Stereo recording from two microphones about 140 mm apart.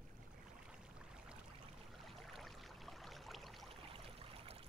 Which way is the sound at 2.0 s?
Centre (ahead or behind).